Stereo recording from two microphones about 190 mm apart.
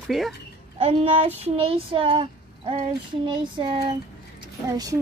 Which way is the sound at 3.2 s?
25° right (ahead or behind).